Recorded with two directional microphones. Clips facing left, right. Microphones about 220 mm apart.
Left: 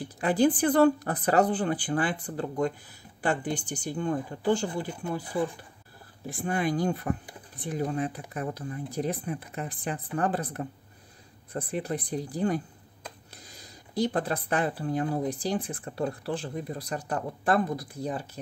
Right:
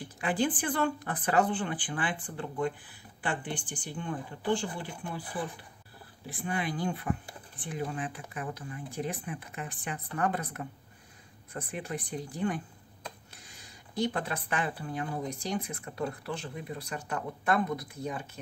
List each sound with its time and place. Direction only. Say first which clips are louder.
0.2 s speech: left 7 dB; 40° left (ahead or behind)
6.2 s speech: left 5 dB; 45° left (ahead or behind)